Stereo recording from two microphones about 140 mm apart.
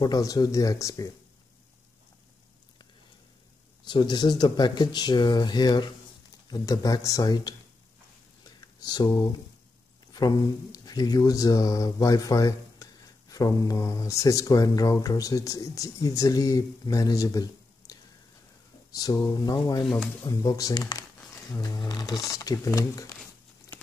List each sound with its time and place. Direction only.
0.0 s speech: 25° left (ahead or behind)
3.8 s speech: 30° left (ahead or behind)
8.8 s speech: 30° left (ahead or behind)